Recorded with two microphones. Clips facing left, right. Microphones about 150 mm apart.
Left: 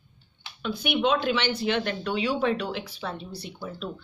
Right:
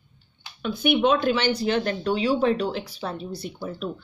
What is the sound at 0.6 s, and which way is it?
Speech, 45° right (ahead or behind).